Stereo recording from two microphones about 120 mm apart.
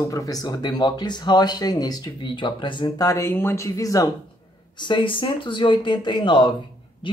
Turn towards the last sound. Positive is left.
turn(degrees=45)  # may be behind; listen again after turning